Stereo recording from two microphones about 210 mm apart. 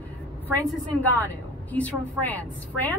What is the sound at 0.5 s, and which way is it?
A woman's voice, 10° left (ahead or behind).